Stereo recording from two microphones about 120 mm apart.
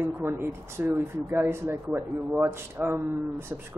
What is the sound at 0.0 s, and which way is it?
Speech, 20° right (ahead or behind).